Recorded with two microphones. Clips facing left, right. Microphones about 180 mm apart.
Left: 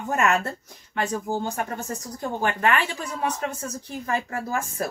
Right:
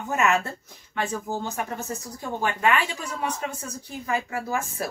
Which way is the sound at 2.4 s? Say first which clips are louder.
Even; 45° left (ahead or behind).